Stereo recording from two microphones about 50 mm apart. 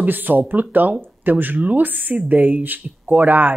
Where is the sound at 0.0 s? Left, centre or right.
Right.